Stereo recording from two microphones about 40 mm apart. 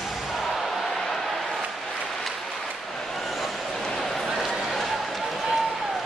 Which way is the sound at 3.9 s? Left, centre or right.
Centre.